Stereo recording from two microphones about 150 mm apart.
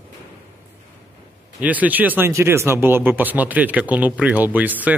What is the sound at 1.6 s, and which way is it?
Speech, 10° right (ahead or behind).